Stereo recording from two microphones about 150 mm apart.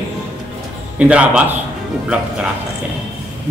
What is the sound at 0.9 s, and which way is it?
Speech, 10° right (ahead or behind).